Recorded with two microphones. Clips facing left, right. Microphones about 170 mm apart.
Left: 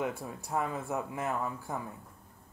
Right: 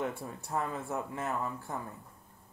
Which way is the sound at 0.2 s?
15° left (ahead or behind).